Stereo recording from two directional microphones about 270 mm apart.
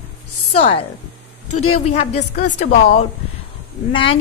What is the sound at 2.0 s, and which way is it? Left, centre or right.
A woman's voice, left.